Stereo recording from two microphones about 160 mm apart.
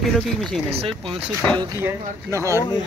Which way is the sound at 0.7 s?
40° right (ahead or behind).